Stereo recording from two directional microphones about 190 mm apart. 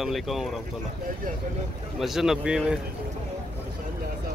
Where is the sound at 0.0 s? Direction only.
Centre (ahead or behind).